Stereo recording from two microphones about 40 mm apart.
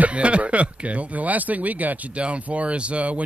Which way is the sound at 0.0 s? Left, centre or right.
Right.